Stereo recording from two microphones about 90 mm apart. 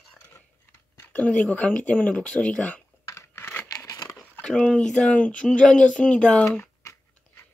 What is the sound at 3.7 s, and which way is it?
Crumpling, 40° left (ahead or behind).